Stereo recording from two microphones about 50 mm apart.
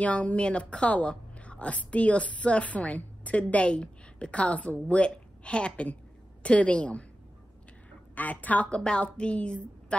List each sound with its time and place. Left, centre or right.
0.0 s a woman's voice: left
8.1 s a woman's voice: left
8.6 s a woman's voice: left